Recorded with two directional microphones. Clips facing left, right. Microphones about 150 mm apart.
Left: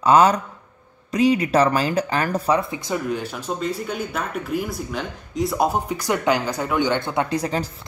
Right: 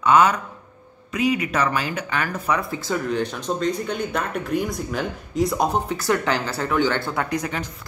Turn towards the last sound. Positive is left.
turn(degrees=35)  # may be behind; listen again after turning